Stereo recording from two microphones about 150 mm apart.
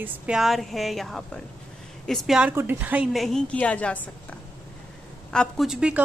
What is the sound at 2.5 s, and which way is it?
Speech, 15° right (ahead or behind).